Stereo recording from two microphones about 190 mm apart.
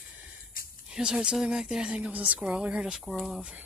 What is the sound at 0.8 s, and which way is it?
Speech, 5° right (ahead or behind).